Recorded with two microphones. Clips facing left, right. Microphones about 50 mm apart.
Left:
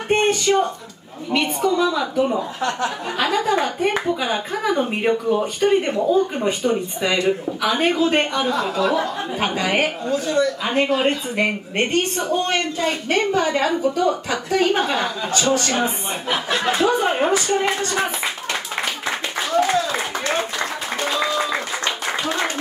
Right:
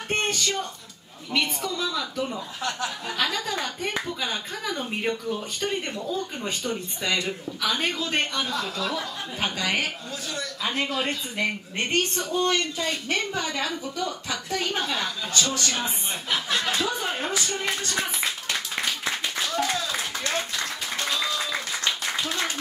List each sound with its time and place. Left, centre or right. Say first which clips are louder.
0.1 s music: left 9 dB; centre
1.3 s speech: left 8 dB; left
2.3 s a woman's voice: left 8 dB; left
3.2 s a woman's voice: left 9 dB; centre
20.0 s applause: left 6 dB; left